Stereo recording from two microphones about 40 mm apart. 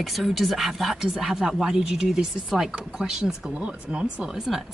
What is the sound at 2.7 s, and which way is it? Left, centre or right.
Speech, right.